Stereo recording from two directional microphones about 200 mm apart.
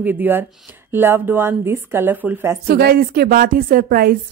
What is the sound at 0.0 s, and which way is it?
Speech, 10° right (ahead or behind).